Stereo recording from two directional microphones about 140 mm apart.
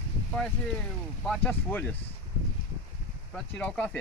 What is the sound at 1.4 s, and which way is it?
Speech, 10° left (ahead or behind).